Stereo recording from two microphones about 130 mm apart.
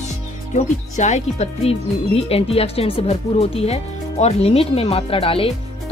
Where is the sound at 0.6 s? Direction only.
60° left (ahead or behind).